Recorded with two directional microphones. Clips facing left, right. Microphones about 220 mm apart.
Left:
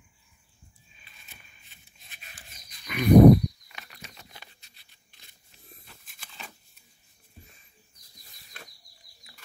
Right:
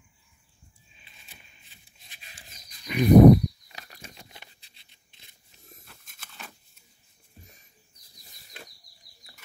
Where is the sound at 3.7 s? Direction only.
45° right (ahead or behind).